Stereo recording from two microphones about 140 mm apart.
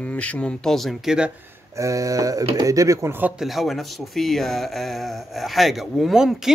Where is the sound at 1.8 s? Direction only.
25° right (ahead or behind).